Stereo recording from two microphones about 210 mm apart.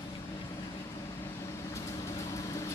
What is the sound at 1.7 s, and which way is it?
Vehicle, 15° left (ahead or behind).